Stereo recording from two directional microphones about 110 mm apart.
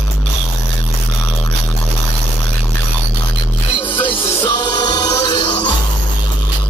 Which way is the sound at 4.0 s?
50° left (ahead or behind).